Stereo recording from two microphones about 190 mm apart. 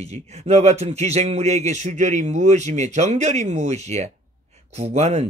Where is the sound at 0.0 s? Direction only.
35° right (ahead or behind).